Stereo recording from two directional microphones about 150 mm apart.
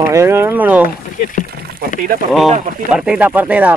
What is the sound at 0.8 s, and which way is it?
Speech, 65° left (ahead or behind).